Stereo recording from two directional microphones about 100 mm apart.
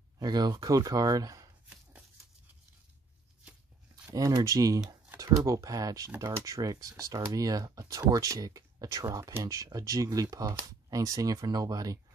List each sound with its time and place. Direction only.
0.2 s speech: 40° right (ahead or behind)
3.9 s speech: 35° right (ahead or behind)